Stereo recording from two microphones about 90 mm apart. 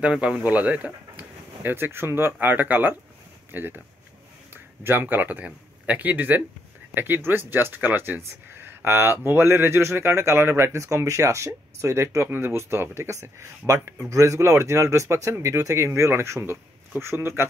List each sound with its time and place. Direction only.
0.0 s speech: 10° right (ahead or behind)
4.8 s speech: 20° right (ahead or behind)